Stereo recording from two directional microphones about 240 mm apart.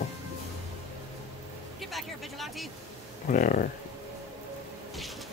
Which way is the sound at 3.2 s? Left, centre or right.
Left.